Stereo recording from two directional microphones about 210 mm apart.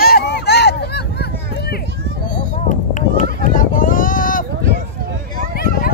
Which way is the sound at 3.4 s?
40° left (ahead or behind).